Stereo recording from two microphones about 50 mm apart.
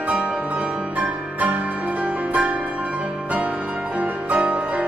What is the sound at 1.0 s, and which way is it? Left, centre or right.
Music, right.